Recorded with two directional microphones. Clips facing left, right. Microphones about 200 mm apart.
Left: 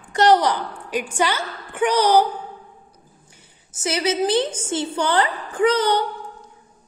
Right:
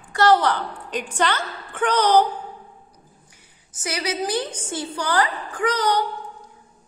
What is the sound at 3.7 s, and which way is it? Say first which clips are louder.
Speech: left 5 dB; 25° left (ahead or behind).